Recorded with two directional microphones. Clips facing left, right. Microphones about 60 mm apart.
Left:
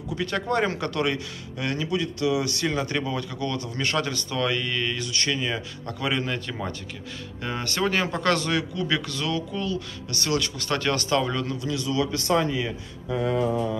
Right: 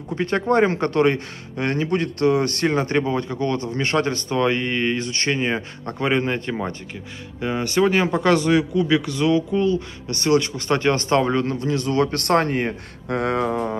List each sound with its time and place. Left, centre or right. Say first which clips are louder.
0.1 s a man's voice: right 6 dB; right
7.4 s speech: right 7 dB; centre; by 13.2 s right
13.2 s mantra: right 2 dB; right